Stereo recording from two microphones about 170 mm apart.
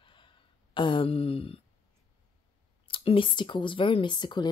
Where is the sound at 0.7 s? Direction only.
30° left (ahead or behind).